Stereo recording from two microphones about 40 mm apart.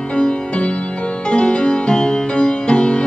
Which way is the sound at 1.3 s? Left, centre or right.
Left.